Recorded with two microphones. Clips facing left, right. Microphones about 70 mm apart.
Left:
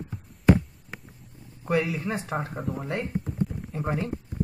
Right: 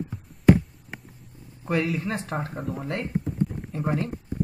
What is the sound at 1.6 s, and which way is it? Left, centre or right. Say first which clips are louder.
Speech: even; centre.